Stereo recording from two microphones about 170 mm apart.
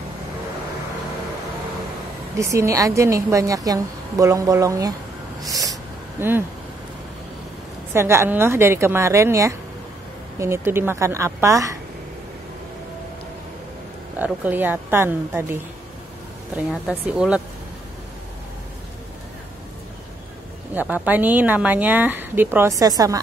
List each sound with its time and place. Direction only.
2.3 s a woman's voice: 20° right (ahead or behind)
5.4 s snort: 20° right (ahead or behind)
7.9 s speech: 15° right (ahead or behind)
14.1 s speech: 10° right (ahead or behind)
16.8 s speech: 10° right (ahead or behind)
20.7 s speech: 10° right (ahead or behind)